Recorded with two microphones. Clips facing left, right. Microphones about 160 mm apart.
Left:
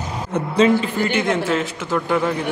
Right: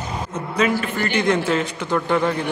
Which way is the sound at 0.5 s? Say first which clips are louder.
Left 5 dB; 30° left (ahead or behind).